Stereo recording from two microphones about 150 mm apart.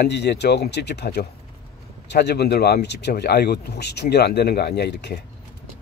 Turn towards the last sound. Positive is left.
turn(degrees=90)